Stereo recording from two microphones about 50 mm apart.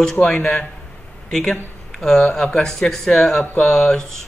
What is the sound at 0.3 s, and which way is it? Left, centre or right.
A man's voice, centre.